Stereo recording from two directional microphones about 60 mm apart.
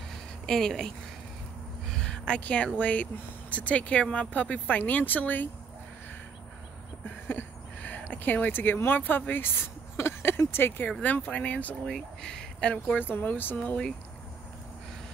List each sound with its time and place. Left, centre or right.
0.5 s speech: centre
1.9 s a sound: centre
2.4 s speech: left
7.2 s speech: left
10.9 s speech: left
11.8 s speech: centre
13.0 s speech: left